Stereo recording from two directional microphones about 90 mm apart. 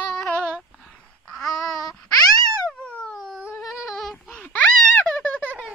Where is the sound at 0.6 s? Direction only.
Centre (ahead or behind).